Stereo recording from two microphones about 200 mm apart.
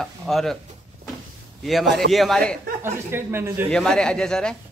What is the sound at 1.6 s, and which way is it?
Speech, centre (ahead or behind).